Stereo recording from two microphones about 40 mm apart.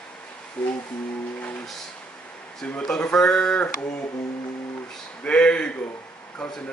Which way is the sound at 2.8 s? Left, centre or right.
Left.